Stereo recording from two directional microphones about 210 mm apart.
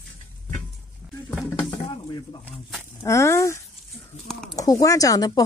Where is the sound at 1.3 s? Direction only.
Centre (ahead or behind).